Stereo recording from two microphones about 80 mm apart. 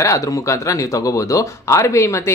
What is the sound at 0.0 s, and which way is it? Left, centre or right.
Speech, left.